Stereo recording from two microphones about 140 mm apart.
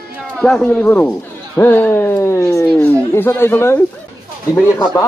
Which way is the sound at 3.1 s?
15° left (ahead or behind).